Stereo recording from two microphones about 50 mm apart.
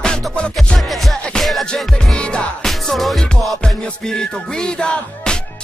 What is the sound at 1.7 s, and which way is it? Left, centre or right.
Music, centre.